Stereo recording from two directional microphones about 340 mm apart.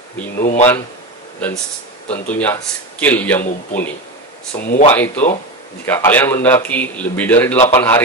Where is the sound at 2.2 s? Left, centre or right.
Centre.